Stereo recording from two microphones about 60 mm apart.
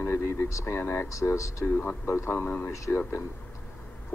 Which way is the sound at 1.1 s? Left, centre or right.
Left.